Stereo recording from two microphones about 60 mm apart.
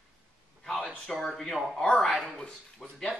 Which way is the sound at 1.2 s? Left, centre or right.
Centre.